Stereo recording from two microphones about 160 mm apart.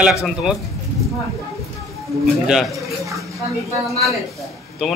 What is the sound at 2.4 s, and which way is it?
Speech, centre (ahead or behind).